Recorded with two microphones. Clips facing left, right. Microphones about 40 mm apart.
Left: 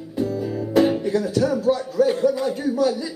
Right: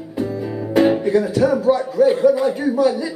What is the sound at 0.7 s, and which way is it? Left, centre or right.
Music, right.